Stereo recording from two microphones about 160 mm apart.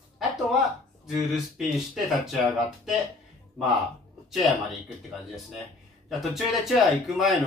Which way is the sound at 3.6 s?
Centre (ahead or behind).